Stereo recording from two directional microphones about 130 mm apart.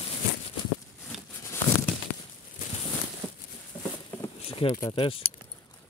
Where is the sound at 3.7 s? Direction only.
10° left (ahead or behind).